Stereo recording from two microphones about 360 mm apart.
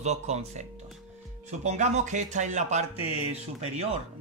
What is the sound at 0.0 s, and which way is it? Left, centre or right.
Speech, centre.